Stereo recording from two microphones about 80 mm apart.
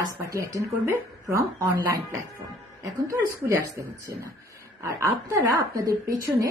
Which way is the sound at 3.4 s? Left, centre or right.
Right.